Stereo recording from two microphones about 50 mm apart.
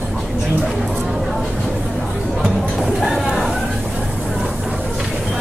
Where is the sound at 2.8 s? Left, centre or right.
Centre.